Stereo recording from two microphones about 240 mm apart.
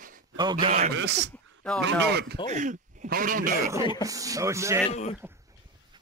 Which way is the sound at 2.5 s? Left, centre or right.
Right.